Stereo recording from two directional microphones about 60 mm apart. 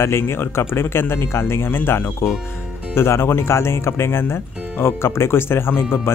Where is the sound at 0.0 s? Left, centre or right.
Left.